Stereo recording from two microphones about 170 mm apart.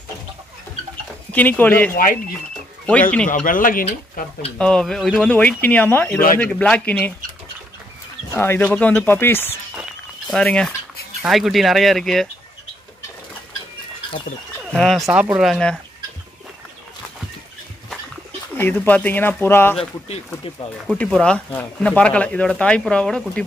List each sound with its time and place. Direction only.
1.3 s speech: 10° left (ahead or behind)
2.9 s speech: 10° left (ahead or behind)
3.3 s speech: 50° left (ahead or behind)
4.6 s speech: 5° left (ahead or behind)
8.3 s speech: 15° left (ahead or behind)
14.7 s speech: 5° left (ahead or behind)
18.6 s speech: 10° left (ahead or behind)